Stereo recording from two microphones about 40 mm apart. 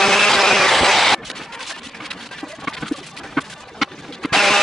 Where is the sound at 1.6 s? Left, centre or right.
Centre.